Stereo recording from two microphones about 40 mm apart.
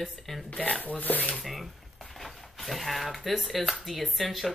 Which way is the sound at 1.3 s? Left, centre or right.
Centre.